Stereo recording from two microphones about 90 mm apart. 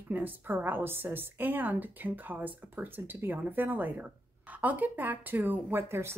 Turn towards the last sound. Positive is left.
turn(degrees=-30)  # may be behind; listen again after turning